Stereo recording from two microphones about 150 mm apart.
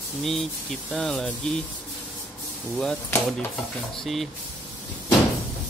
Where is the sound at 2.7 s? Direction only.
5° left (ahead or behind).